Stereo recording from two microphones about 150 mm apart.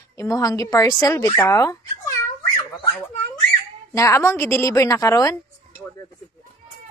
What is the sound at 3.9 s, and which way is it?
Speech, 20° left (ahead or behind).